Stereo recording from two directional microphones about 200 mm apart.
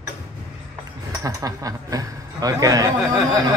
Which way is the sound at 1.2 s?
15° right (ahead or behind).